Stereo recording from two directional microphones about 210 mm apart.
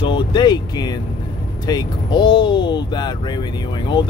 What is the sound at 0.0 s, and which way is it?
Speech, 20° left (ahead or behind).